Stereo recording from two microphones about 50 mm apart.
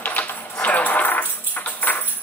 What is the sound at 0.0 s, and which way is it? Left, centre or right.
Coin, left.